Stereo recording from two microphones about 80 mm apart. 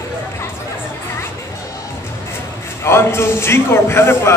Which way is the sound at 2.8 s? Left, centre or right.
Left.